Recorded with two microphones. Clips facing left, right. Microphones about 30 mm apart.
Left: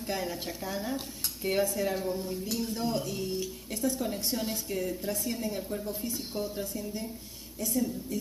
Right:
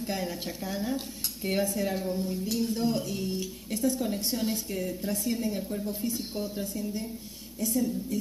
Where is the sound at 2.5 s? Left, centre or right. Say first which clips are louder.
Right 3 dB; right.